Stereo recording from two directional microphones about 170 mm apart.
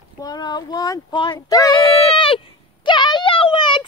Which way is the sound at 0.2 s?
25° left (ahead or behind).